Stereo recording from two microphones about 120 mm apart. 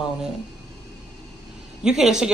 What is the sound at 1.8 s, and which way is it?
Speech, 5° right (ahead or behind).